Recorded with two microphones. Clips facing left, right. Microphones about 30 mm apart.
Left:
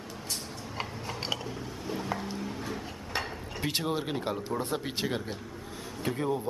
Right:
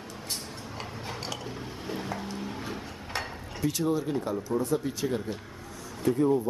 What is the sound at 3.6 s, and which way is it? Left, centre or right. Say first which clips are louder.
Speech: right 3 dB; left.